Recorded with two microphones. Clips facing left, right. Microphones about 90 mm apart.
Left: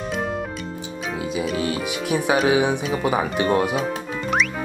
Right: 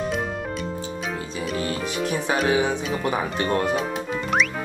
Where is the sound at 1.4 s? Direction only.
5° left (ahead or behind).